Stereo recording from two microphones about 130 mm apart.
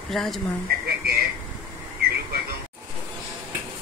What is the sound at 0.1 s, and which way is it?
Speech, 5° left (ahead or behind).